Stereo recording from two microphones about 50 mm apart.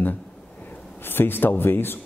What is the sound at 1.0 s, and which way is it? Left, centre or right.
A man's voice, left.